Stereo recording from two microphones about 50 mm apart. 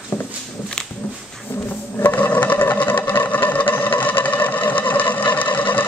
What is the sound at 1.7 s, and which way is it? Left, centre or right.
Sewing machine, left.